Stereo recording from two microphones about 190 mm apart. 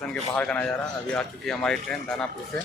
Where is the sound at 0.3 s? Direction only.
5° left (ahead or behind).